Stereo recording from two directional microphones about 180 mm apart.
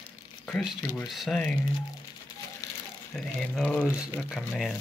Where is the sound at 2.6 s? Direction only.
20° left (ahead or behind).